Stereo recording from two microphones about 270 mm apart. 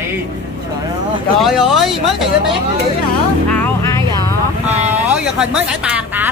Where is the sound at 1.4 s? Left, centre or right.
Centre.